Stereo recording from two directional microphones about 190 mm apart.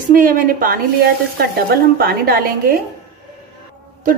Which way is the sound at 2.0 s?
55° right (ahead or behind).